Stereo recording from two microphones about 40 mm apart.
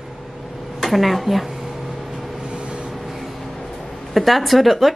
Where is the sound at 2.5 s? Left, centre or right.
Right.